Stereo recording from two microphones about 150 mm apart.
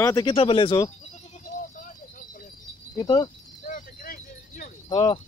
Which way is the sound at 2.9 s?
25° left (ahead or behind).